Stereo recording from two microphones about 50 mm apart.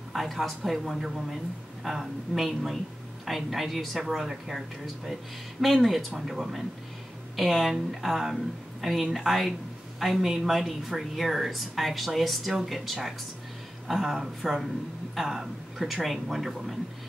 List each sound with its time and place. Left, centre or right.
0.1 s a man's voice: centre